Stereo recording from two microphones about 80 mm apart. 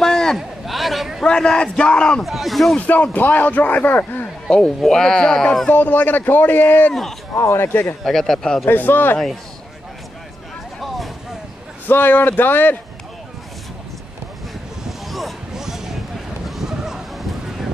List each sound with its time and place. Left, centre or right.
0.0 s a sound: centre
1.2 s speech: centre
2.2 s a man's voice: centre
2.9 s speech: centre
4.5 s speech: centre
5.7 s speech: left
6.9 s speech: centre
7.3 s speech: left
8.0 s a man's voice: centre
8.6 s speech: left
11.9 s speech: left
14.9 s a sound: centre